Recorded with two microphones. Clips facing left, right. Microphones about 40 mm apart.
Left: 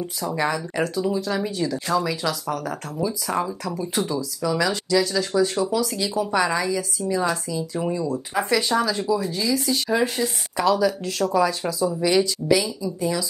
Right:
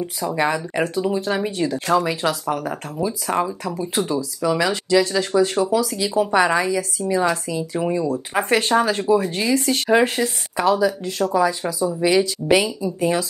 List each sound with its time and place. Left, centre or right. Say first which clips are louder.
0.4 s speech: right 3 dB; right
10.6 s speech: right 2 dB; centre
12.2 s speech: right 3 dB; right